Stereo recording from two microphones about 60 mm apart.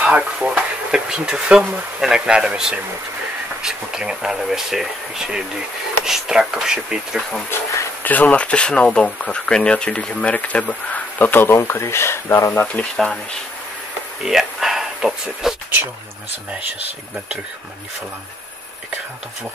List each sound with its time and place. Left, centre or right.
0.0 s speech: right
7.5 s speech: left
8.0 s speech: left
10.9 s a sound: left
11.4 s speech: left
14.2 s a sound: centre